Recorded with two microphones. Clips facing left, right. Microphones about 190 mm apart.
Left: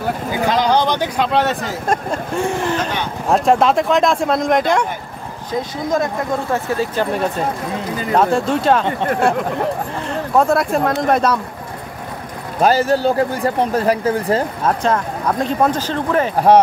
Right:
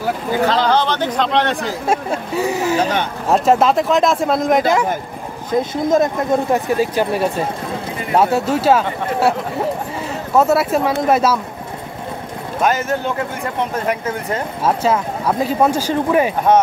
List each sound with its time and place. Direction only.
0.5 s speech: 15° left (ahead or behind)
1.9 s speech: 5° right (ahead or behind)
5.6 s speech: 20° right (ahead or behind); by 11.3 s 5° right (ahead or behind)
12.6 s speech: 35° left (ahead or behind)
14.6 s speech: 5° right (ahead or behind)